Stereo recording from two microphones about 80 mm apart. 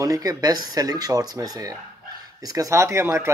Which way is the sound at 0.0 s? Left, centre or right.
Right.